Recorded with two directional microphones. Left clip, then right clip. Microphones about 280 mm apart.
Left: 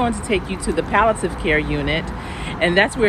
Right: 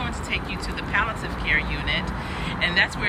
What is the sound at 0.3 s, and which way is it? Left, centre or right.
Speech, centre.